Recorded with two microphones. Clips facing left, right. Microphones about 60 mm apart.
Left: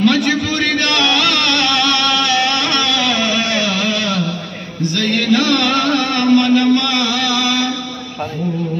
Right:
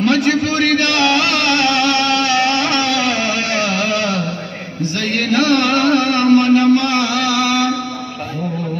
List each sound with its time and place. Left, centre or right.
0.0 s a sound: right
0.9 s music: centre
5.3 s music: right